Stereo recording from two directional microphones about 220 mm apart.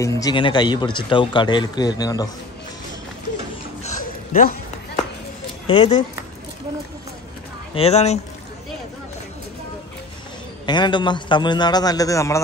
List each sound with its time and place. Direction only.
0.0 s speech: 20° left (ahead or behind)
3.8 s a sound: 35° left (ahead or behind)
5.7 s speech: 25° left (ahead or behind)
7.7 s speech: 30° left (ahead or behind)
10.6 s speech: 20° left (ahead or behind)